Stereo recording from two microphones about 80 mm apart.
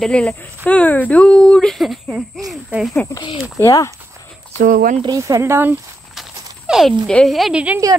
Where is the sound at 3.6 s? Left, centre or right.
Left.